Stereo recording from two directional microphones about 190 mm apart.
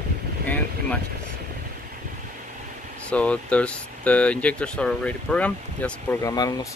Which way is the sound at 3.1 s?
5° left (ahead or behind).